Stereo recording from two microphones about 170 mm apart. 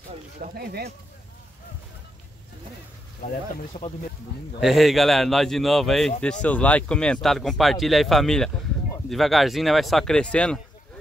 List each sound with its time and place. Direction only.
0.4 s speech: 65° right (ahead or behind)
3.8 s speech: 45° left (ahead or behind)
4.6 s speech: centre (ahead or behind)